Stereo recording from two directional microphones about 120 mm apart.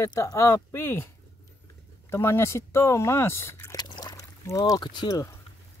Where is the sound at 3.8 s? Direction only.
35° left (ahead or behind).